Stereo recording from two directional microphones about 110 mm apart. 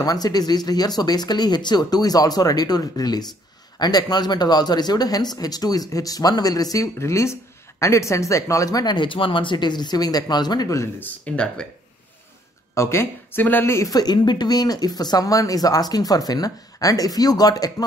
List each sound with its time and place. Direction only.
0.0 s speech: 35° left (ahead or behind)
11.0 s speech: 15° left (ahead or behind)
12.7 s speech: 25° left (ahead or behind)
13.9 s speech: 40° left (ahead or behind)